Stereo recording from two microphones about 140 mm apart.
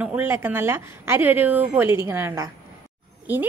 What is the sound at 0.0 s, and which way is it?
A woman's voice, 15° right (ahead or behind).